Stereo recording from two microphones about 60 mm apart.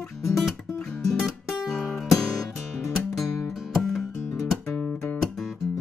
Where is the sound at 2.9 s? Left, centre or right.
Centre.